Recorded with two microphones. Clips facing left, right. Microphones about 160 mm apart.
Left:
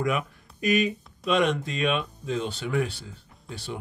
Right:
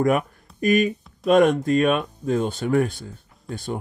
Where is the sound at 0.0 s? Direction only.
45° right (ahead or behind).